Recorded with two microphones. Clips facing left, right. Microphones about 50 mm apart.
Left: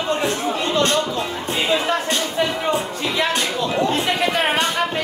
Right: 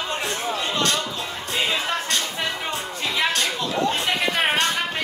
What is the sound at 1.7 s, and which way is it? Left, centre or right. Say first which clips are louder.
Speech: left 8 dB; centre.